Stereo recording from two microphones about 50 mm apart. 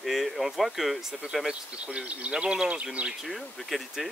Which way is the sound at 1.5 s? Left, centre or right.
Right.